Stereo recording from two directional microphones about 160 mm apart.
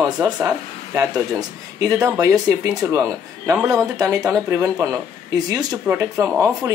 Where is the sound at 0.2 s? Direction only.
10° right (ahead or behind).